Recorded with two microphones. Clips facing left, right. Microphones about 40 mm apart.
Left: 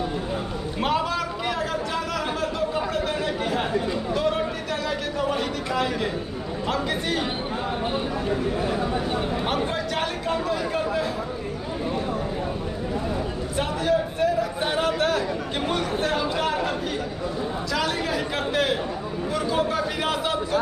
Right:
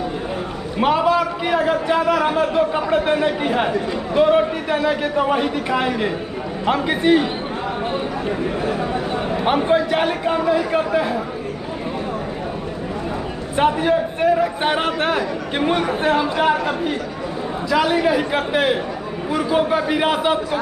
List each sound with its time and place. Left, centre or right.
0.7 s a man's voice: centre
9.3 s a man's voice: right
13.6 s a man's voice: right